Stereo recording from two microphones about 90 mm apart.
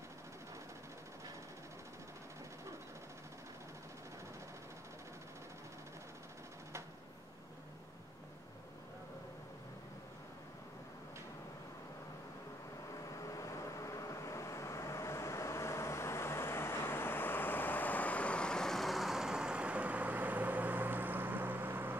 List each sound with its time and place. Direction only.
12.9 s vehicle: 40° left (ahead or behind); by 21.9 s 25° right (ahead or behind)